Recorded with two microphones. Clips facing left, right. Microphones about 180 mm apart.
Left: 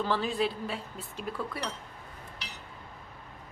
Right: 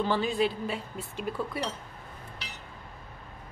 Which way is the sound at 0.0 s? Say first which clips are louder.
Right 2 dB; centre (ahead or behind).